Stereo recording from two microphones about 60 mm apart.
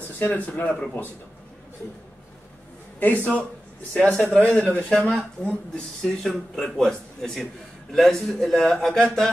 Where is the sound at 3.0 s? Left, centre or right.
Left; by 9.3 s centre.